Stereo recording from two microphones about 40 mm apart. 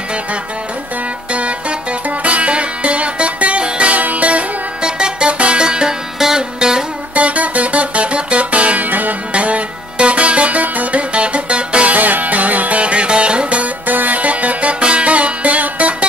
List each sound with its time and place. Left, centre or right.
1.3 s music: right
4.8 s music: right
7.2 s music: right
8.8 s music: right
9.3 s music: right
12.0 s music: right
13.8 s music: right